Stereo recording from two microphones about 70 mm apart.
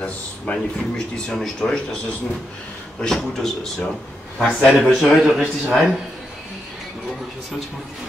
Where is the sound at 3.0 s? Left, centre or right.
Centre.